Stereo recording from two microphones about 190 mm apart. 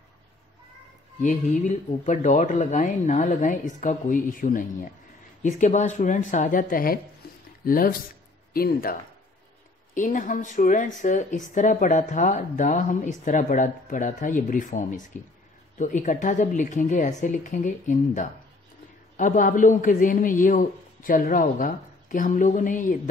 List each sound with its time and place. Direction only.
1.2 s a man's voice: 40° left (ahead or behind)
9.9 s a man's voice: 45° left (ahead or behind)